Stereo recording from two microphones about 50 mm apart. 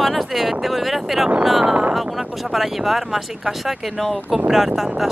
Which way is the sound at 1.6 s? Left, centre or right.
Right.